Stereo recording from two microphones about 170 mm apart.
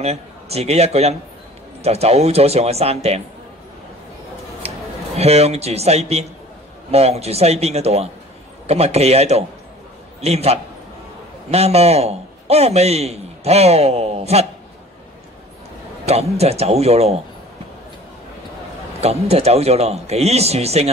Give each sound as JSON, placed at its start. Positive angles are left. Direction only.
{"t": 0.0, "sound": "a man's voice", "side_deg": -40}
{"t": 4.6, "sound": "a man's voice", "side_deg": -40}
{"t": 16.1, "sound": "speech", "side_deg": -40}
{"t": 18.9, "sound": "speech", "side_deg": -40}